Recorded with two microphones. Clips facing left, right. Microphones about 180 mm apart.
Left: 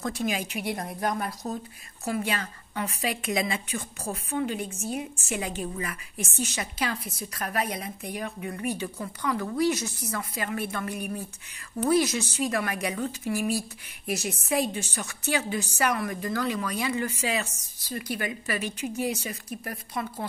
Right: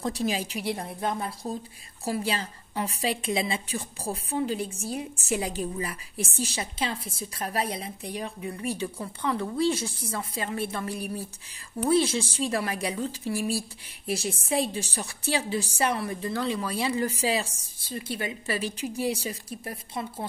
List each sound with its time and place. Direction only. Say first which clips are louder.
0.0 s a woman's voice: right 1 dB; 35° right (ahead or behind)